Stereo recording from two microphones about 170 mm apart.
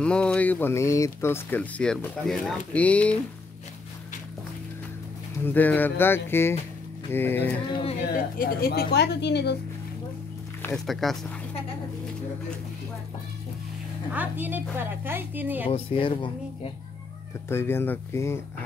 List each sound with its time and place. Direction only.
0.0 s speech: 5° left (ahead or behind)
5.4 s speech: 10° left (ahead or behind)
8.4 s speech: 60° left (ahead or behind); by 9.6 s 80° left
10.9 s speech: centre (ahead or behind)
14.1 s a woman's voice: 10° right (ahead or behind)
15.7 s speech: 30° left (ahead or behind)
17.5 s speech: 15° left (ahead or behind)